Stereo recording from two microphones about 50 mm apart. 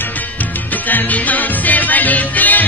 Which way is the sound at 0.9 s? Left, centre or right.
Left.